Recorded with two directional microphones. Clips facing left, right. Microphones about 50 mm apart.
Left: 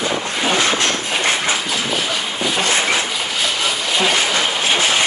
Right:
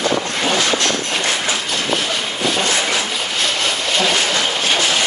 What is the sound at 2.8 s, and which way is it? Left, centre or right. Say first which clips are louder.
Train: left 1 dB; left.